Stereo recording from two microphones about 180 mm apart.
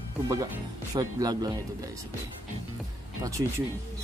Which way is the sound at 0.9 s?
20° right (ahead or behind).